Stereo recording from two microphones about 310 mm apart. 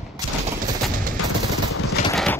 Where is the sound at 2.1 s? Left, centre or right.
Centre.